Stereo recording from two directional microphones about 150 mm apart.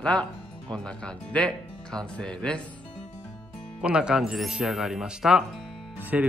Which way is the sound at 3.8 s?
5° right (ahead or behind).